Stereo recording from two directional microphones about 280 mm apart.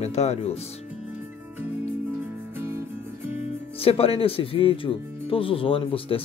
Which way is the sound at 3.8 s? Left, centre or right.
Left.